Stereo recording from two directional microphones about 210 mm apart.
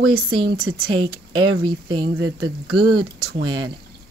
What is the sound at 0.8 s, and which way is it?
Speech, 20° right (ahead or behind).